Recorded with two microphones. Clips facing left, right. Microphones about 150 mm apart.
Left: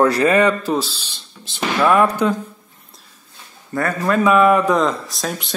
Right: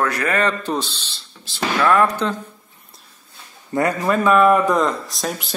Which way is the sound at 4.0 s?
Centre (ahead or behind).